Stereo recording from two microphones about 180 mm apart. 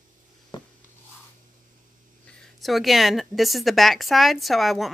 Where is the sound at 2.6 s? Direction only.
Centre (ahead or behind).